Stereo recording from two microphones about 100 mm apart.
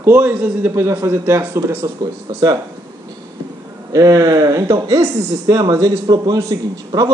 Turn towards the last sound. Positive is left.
turn(degrees=-40)  # may be behind; listen again after turning